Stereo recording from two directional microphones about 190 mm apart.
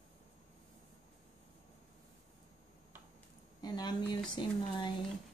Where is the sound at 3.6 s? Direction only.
20° left (ahead or behind).